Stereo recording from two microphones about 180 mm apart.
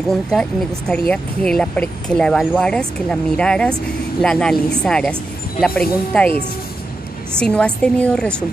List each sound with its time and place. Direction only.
0.3 s speech: 5° left (ahead or behind)
7.3 s speech: 5° left (ahead or behind)